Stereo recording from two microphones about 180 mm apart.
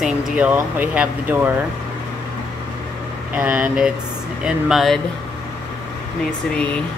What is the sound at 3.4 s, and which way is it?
Speech, 5° right (ahead or behind).